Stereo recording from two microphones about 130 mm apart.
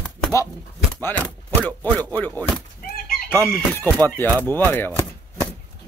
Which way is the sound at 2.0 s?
15° left (ahead or behind).